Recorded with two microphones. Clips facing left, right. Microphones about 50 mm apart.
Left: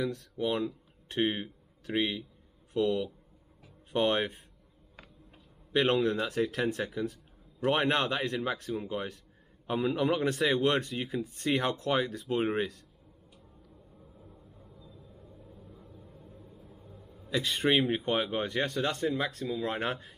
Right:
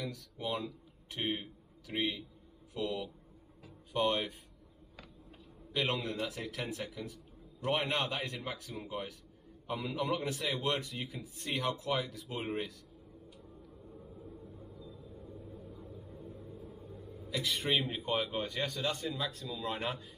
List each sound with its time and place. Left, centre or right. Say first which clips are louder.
0.0 s a man's voice: left 8 dB; left
5.7 s a man's voice: left 8 dB; left
14.1 s vehicle: right 5 dB; centre
15.8 s a sound: right 4 dB; centre
17.7 s a man's voice: left 5 dB; left